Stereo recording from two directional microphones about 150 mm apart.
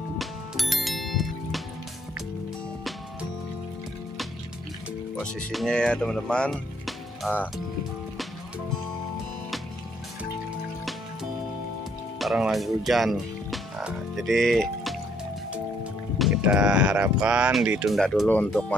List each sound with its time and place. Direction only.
0.2 s bicycle bell: centre (ahead or behind)
5.2 s speech: centre (ahead or behind)
12.2 s speech: centre (ahead or behind)
16.2 s speech: 5° right (ahead or behind)